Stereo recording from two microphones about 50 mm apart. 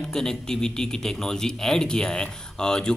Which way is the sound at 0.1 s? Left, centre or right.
Centre.